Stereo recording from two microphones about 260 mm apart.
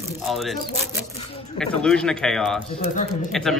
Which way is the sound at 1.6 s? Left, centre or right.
Centre.